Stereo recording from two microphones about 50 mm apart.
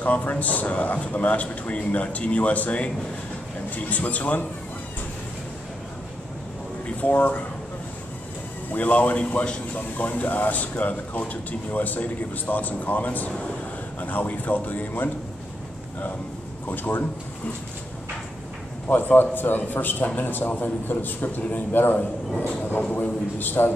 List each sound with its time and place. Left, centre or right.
0.0 s a man's voice: left
7.0 s speech: left
8.7 s speech: left
16.6 s speech: left
18.9 s a man's voice: left